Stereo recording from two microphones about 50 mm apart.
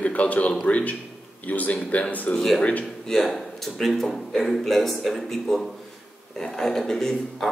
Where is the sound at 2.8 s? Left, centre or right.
Centre.